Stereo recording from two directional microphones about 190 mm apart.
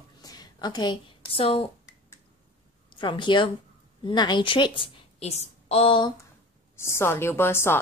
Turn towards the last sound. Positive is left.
turn(degrees=10)  # may be behind; listen again after turning